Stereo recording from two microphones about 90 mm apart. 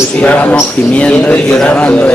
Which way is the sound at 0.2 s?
15° left (ahead or behind).